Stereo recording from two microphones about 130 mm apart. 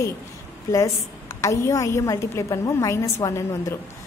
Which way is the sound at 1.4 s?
25° left (ahead or behind).